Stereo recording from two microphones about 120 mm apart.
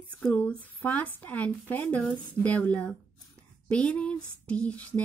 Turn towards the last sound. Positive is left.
turn(degrees=10)  # may be behind; listen again after turning